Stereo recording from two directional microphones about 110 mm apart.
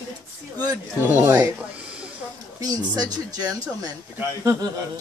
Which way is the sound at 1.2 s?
25° right (ahead or behind).